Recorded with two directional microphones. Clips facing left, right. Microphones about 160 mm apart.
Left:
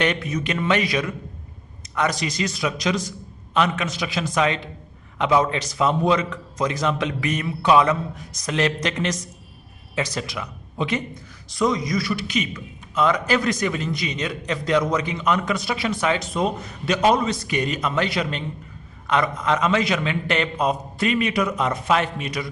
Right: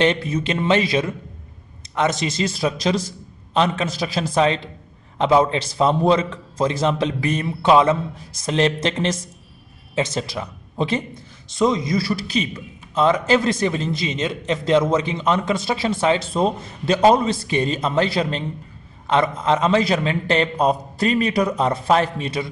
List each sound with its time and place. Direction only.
0.0 s a man's voice: 30° right (ahead or behind)